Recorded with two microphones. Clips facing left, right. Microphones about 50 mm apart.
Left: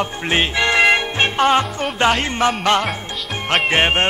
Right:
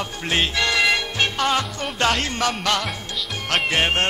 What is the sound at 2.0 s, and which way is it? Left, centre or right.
Speech, centre.